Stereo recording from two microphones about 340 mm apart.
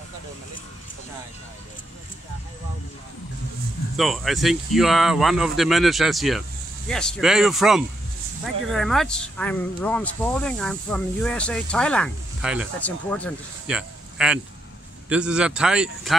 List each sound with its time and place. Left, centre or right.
3.9 s speech: centre